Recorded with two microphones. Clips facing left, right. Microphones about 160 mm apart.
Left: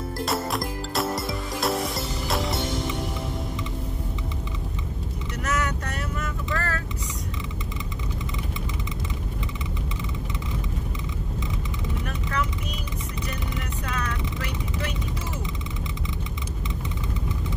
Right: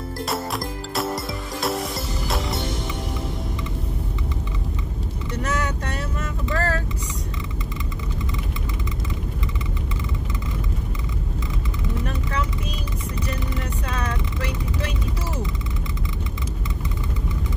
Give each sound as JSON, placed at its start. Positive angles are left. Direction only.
{"t": 0.2, "sound": "music", "side_deg": 0}
{"t": 5.4, "sound": "vehicle", "side_deg": -30}